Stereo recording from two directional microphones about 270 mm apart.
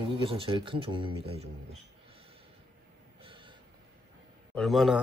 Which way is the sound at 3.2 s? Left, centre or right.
Centre.